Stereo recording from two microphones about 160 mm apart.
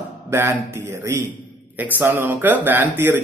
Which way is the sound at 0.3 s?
15° right (ahead or behind).